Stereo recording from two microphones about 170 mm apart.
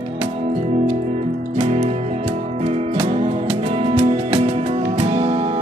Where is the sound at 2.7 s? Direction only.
35° right (ahead or behind).